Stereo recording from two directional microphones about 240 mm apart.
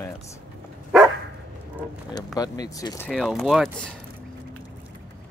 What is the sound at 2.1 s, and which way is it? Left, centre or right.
Speech, centre.